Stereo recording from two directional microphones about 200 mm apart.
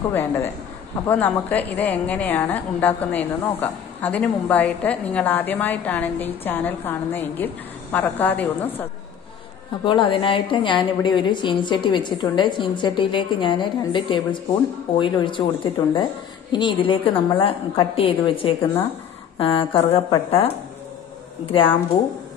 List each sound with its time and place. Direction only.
1.0 s a woman's voice: 10° left (ahead or behind)
9.8 s a woman's voice: 25° left (ahead or behind)